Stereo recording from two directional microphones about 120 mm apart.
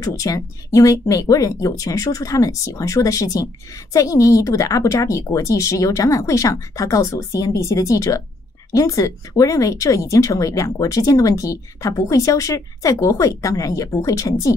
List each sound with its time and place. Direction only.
0.0 s speech: 30° left (ahead or behind)